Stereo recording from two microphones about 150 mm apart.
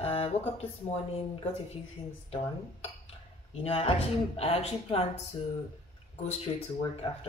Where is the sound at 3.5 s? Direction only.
40° left (ahead or behind).